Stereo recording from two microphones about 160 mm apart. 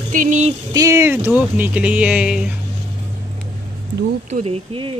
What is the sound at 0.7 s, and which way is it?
Speech, 20° right (ahead or behind).